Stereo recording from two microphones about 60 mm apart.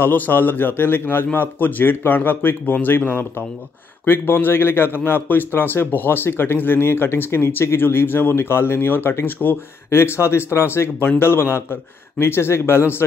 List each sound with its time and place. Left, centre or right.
0.0 s a man's voice: left
9.8 s speech: left